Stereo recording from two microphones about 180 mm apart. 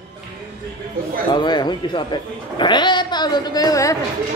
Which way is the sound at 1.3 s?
25° left (ahead or behind).